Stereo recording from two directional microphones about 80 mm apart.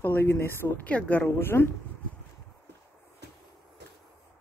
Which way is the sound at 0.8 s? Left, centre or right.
Centre.